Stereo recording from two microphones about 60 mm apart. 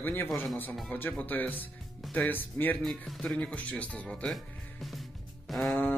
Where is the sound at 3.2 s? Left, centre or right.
Centre.